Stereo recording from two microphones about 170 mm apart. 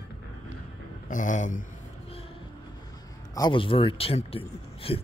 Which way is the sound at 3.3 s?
25° left (ahead or behind).